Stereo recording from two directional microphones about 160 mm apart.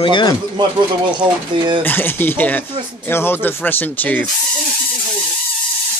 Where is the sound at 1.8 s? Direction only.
10° left (ahead or behind).